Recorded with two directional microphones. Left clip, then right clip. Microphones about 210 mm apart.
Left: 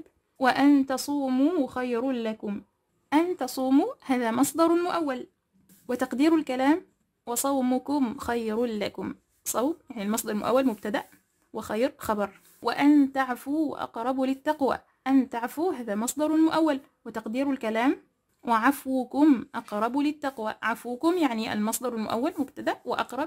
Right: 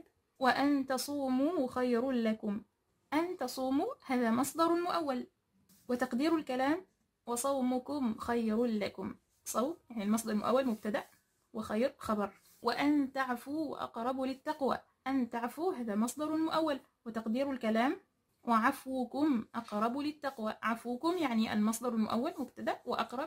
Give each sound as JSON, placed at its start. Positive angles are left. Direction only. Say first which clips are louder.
{"t": 0.4, "sound": "speech", "louder": "left 8 dB", "side_deg": 30}